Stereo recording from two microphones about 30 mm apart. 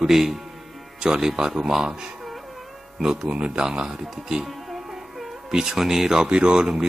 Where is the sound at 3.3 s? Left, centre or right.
Right.